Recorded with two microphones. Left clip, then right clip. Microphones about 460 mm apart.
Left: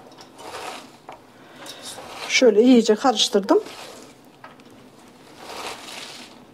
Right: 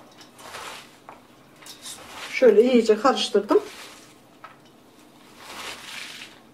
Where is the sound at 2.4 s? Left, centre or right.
Left.